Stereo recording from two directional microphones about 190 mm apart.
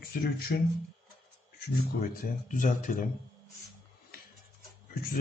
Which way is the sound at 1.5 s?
50° left (ahead or behind).